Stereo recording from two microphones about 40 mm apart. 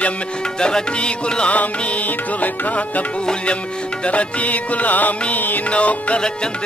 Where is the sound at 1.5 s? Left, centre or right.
Left.